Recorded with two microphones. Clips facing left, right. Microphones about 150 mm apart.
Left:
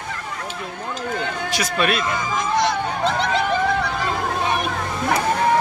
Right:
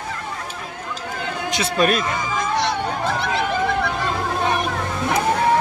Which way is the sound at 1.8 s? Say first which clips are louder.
Right 3 dB; 40° right (ahead or behind).